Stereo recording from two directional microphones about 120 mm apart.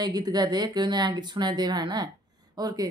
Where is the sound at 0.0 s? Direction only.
35° right (ahead or behind).